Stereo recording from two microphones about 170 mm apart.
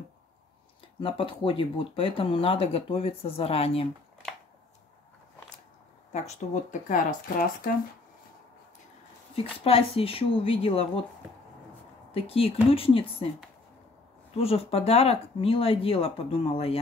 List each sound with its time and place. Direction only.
1.0 s speech: 30° left (ahead or behind)
6.1 s speech: 45° left (ahead or behind)
9.3 s speech: 35° left (ahead or behind)
12.1 s speech: 35° left (ahead or behind)
14.3 s speech: 35° left (ahead or behind)